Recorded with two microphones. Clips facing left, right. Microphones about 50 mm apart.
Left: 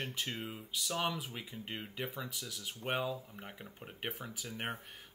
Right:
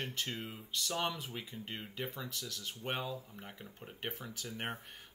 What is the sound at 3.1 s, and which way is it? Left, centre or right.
Speech, centre.